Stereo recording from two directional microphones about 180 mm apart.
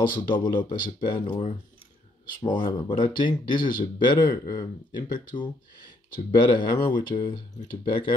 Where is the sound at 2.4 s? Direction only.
25° left (ahead or behind).